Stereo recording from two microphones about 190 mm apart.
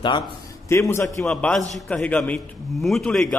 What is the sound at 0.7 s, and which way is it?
A man's voice, 15° left (ahead or behind).